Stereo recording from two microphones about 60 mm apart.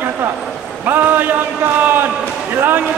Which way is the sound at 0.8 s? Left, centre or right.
Right.